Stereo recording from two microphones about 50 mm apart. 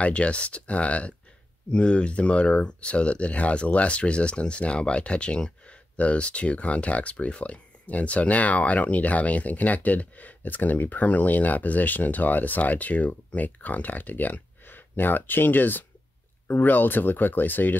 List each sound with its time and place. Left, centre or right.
0.0 s speech: left